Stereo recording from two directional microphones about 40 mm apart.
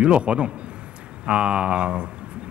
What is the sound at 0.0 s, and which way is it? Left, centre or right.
Speech, right.